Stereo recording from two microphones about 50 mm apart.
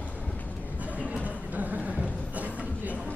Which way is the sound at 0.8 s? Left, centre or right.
Right.